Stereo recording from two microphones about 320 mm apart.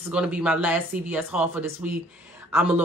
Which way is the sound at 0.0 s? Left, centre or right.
Centre.